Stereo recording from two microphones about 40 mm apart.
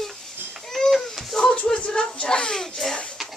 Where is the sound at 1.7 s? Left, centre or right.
Left; by 3.0 s centre.